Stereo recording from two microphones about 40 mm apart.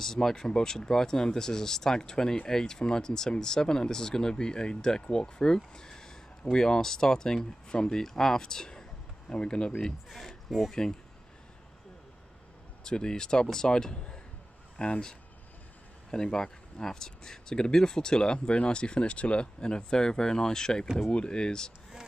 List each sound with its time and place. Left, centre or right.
0.0 s speech: centre
5.8 s a sound: centre
6.5 s speech: centre
10.0 s speech: centre
12.8 s speech: centre